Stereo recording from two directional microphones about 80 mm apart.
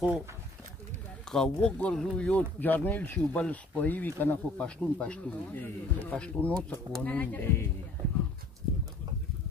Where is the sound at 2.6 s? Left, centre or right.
Left.